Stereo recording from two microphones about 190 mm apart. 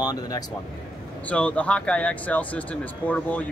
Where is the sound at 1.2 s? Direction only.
5° left (ahead or behind).